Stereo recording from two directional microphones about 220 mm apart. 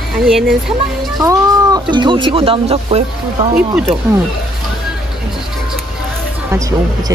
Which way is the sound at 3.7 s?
Centre (ahead or behind).